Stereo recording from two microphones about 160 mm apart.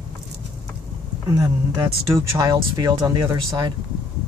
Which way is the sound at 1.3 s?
20° right (ahead or behind).